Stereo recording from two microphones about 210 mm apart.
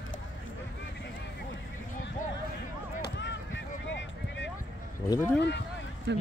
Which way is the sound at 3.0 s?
55° left (ahead or behind).